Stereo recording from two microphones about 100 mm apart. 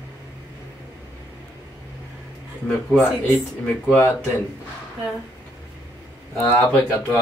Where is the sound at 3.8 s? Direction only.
20° left (ahead or behind).